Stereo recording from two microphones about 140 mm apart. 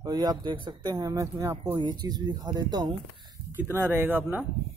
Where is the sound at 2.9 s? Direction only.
35° right (ahead or behind).